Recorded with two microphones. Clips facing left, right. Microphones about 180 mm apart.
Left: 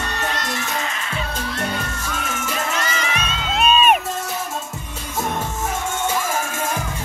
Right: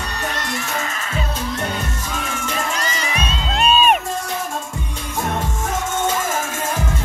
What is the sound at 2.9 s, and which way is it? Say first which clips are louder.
Crowd: right 1 dB; 35° right (ahead or behind).